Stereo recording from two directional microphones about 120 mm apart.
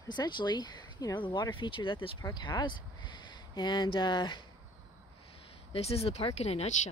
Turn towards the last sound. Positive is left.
turn(degrees=65)  # may be behind; listen again after turning